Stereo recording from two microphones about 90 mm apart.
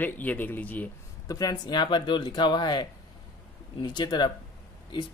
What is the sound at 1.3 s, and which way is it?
Speech, 45° left (ahead or behind).